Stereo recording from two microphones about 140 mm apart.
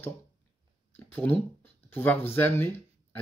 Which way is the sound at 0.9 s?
15° left (ahead or behind).